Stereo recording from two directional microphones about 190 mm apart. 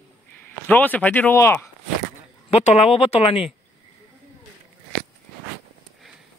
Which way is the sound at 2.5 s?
35° left (ahead or behind).